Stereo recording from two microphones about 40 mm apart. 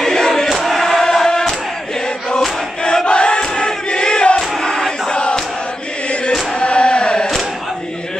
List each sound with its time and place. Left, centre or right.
0.0 s crowd: centre
3.1 s crowd: left
4.4 s battle cry: centre
5.1 s crowd: left
6.6 s a sound: left